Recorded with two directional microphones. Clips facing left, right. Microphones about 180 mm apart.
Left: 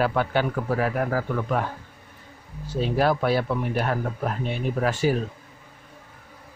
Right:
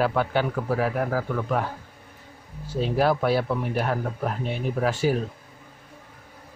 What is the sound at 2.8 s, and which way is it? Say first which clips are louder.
Speech: even; 5° right (ahead or behind).